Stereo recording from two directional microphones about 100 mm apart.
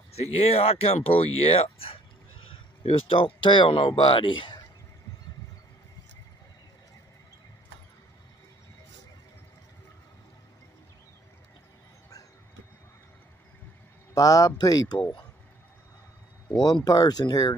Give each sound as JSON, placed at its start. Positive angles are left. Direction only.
{"t": 0.1, "sound": "speech", "side_deg": 90}
{"t": 14.1, "sound": "speech", "side_deg": 35}
{"t": 16.5, "sound": "speech", "side_deg": 45}